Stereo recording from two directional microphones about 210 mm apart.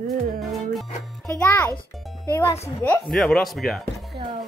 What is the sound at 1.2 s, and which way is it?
Speech, 10° left (ahead or behind).